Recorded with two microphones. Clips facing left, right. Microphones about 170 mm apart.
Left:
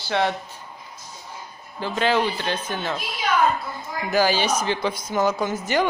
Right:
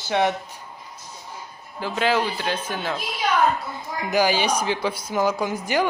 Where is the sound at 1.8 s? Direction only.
5° right (ahead or behind).